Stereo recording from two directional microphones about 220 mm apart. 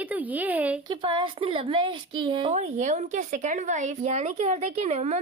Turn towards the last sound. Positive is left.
turn(degrees=-30)  # may be behind; listen again after turning